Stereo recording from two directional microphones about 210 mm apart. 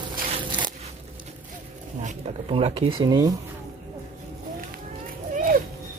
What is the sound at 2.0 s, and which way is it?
Speech, 30° right (ahead or behind).